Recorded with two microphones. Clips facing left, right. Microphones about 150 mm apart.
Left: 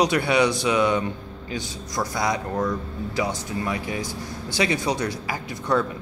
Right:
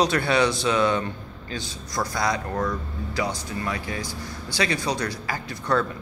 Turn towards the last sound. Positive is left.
turn(degrees=20)  # may be behind; listen again after turning